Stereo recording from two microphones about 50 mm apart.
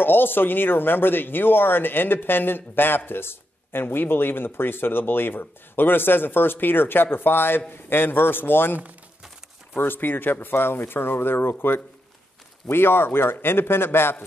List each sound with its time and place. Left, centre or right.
0.0 s speech: left
9.8 s speech: left